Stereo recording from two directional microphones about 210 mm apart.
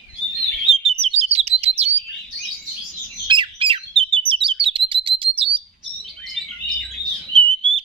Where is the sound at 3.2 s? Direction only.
25° right (ahead or behind).